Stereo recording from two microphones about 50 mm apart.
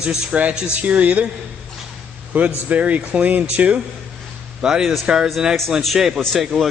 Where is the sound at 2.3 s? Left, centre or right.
Right.